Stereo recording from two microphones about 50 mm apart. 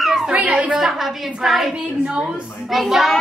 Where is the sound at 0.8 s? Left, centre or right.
Centre.